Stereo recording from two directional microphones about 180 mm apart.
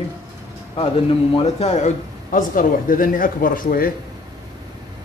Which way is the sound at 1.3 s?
35° left (ahead or behind).